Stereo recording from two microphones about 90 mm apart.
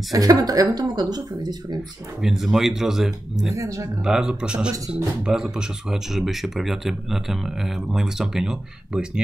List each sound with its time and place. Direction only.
0.1 s speech: 40° right (ahead or behind)
2.2 s speech: 5° right (ahead or behind)
3.5 s speech: 35° right (ahead or behind)
4.0 s speech: 10° right (ahead or behind)